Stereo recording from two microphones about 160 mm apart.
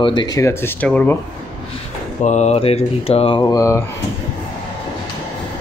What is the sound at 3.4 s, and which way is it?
Speech, 20° left (ahead or behind).